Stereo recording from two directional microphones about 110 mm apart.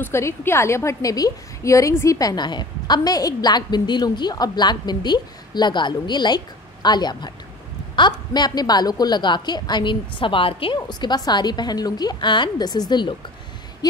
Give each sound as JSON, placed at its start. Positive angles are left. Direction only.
{"t": 0.0, "sound": "a woman's voice", "side_deg": 20}
{"t": 10.9, "sound": "a woman's voice", "side_deg": 40}